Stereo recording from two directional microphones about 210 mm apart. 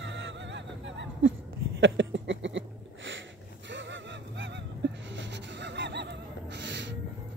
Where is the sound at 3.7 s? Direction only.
60° right (ahead or behind).